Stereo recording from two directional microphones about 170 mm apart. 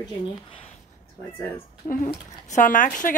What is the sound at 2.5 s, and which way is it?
Speech, 50° left (ahead or behind).